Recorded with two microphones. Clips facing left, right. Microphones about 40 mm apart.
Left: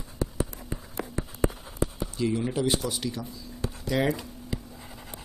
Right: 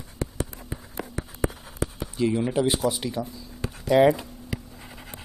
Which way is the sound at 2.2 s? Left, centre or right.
Centre.